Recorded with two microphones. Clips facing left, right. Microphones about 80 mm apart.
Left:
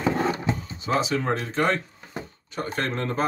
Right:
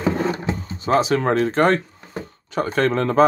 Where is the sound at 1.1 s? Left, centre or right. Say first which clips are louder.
Right 7 dB; right.